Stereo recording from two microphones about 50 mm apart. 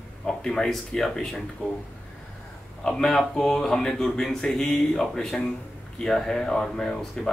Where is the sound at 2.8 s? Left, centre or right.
Centre.